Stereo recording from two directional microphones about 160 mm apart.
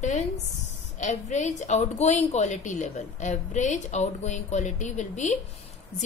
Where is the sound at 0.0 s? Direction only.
45° left (ahead or behind).